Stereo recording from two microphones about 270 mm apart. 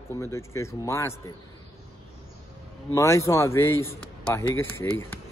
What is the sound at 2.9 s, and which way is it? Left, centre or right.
A man's voice, centre.